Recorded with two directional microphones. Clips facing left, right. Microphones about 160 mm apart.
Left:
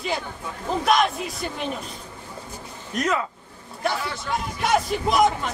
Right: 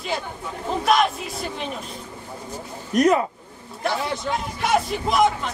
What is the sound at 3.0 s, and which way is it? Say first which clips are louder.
Speech: right 7 dB; 35° right (ahead or behind).